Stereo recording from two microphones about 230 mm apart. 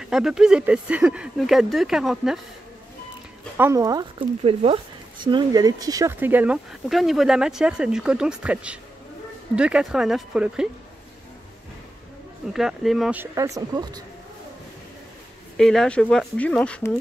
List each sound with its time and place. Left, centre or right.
0.0 s speech: centre
3.5 s speech: centre
12.5 s speech: centre
15.5 s speech: centre